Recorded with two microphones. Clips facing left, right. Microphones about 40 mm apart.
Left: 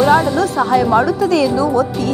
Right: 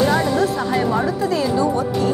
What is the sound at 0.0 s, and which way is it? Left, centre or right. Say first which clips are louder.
Speech: left 5 dB; left.